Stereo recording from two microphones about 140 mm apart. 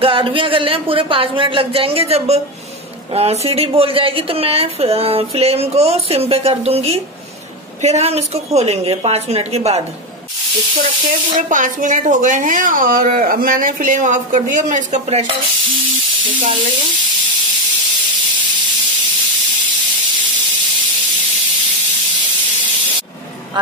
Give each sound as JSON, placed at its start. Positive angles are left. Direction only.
{"t": 0.0, "sound": "a woman's voice", "side_deg": -40}
{"t": 11.3, "sound": "a woman's voice", "side_deg": -65}